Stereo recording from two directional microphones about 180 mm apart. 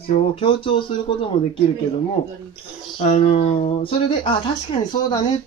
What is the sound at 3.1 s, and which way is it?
Speech, 35° left (ahead or behind).